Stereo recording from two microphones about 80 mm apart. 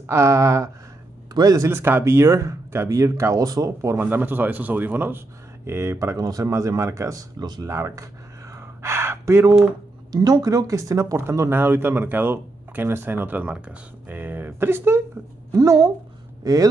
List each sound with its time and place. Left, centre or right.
0.0 s speech: right
1.3 s speech: right
1.7 s speech: right
4.0 s speech: right
5.7 s speech: right
7.6 s speech: right
8.5 s gasp: right
10.1 s speech: right
15.5 s speech: right